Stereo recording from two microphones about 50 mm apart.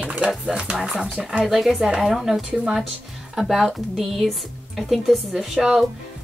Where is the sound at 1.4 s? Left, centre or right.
Centre.